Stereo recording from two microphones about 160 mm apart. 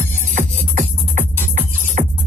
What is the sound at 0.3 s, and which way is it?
Music, 50° right (ahead or behind).